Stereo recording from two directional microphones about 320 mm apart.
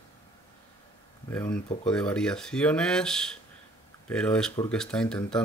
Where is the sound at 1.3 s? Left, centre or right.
Centre.